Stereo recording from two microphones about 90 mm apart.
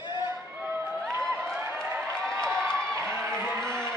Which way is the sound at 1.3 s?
Centre (ahead or behind).